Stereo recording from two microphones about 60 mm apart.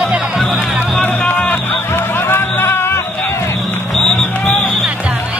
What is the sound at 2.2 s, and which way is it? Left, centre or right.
Music, left.